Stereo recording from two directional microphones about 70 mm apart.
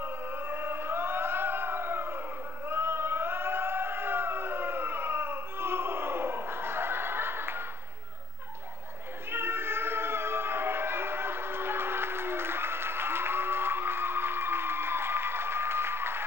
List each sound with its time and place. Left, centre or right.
0.0 s choir: right
2.7 s a sound: right
9.3 s cat: right